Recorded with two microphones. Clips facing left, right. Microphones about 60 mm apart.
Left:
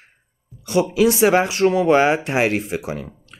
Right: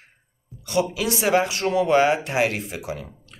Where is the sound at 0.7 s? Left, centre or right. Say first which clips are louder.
Left 6 dB; left.